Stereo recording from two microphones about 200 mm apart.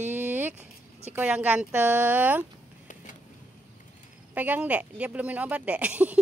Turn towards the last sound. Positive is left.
turn(degrees=-5)  # may be behind; listen again after turning